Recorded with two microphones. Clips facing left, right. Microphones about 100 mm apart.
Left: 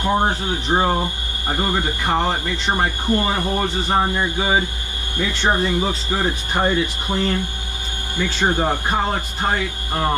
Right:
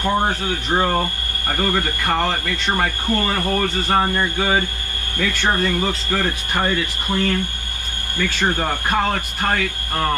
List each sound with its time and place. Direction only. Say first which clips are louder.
0.0 s speech: left 1 dB; 15° left (ahead or behind)